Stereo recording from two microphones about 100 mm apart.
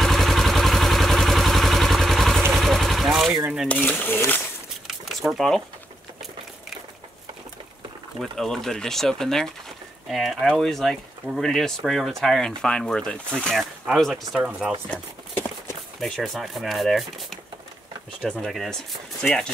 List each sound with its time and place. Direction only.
0.0 s vehicle: centre (ahead or behind)
3.6 s speech: 15° left (ahead or behind)
4.8 s a sound: 5° right (ahead or behind)
8.2 s speech: 5° left (ahead or behind)
16.0 s speech: centre (ahead or behind)
18.4 s speech: 5° left (ahead or behind)